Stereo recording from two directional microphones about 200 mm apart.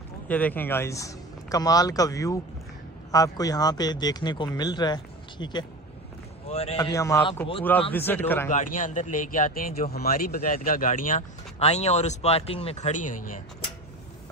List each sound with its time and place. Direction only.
0.3 s a man's voice: 10° left (ahead or behind); by 6.8 s 30° left (ahead or behind)
6.8 s a man's voice: 15° left (ahead or behind)
8.5 s speech: 40° left (ahead or behind)